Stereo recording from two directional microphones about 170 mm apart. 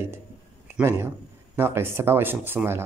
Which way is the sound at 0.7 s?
15° right (ahead or behind).